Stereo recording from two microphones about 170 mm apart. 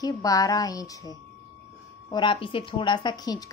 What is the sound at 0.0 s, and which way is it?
A woman's voice, 20° left (ahead or behind).